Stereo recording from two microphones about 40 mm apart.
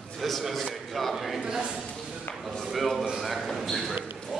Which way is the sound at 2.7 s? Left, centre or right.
Centre.